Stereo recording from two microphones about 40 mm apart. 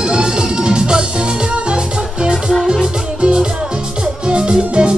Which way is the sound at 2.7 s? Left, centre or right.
Centre.